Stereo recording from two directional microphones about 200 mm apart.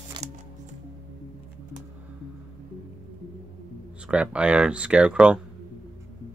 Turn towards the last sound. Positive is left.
turn(degrees=-5)  # may be behind; listen again after turning